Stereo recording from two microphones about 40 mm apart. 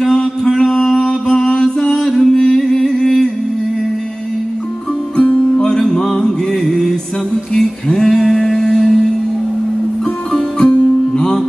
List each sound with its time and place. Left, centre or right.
0.1 s mantra: centre
2.3 s music: centre
5.1 s music: left
5.6 s mantra: centre
7.9 s a sound: centre
10.3 s music: centre